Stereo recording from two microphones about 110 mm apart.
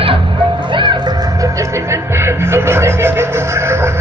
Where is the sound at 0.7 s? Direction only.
45° right (ahead or behind).